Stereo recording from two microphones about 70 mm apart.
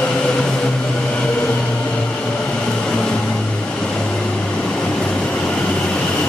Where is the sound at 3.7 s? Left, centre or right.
Centre.